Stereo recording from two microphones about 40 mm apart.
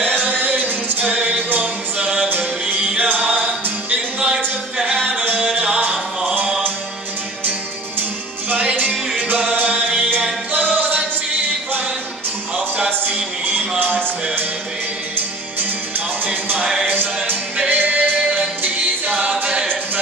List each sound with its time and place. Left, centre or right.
0.0 s music: right
1.1 s music: right
3.0 s music: right
3.3 s music: right
5.4 s music: right
8.5 s music: right
8.7 s music: right
13.7 s music: right
16.9 s music: right